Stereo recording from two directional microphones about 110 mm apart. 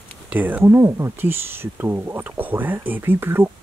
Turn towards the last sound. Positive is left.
turn(degrees=-20)  # may be behind; listen again after turning